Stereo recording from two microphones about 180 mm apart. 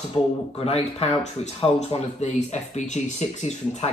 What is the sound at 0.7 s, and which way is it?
Speech, 35° left (ahead or behind).